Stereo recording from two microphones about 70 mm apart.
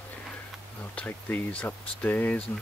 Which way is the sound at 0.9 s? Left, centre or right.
Centre.